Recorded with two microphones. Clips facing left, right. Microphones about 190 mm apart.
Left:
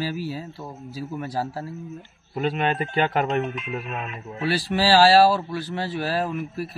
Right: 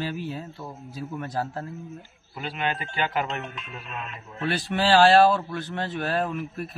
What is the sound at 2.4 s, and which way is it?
A man's voice, 35° left (ahead or behind).